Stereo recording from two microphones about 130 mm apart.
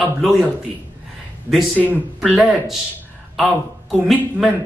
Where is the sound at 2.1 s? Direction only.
Centre (ahead or behind).